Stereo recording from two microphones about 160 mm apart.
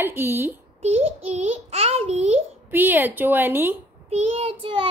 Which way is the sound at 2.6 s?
10° right (ahead or behind).